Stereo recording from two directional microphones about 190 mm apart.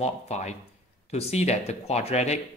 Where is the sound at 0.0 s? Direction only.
35° left (ahead or behind).